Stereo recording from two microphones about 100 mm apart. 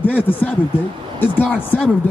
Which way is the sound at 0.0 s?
15° left (ahead or behind).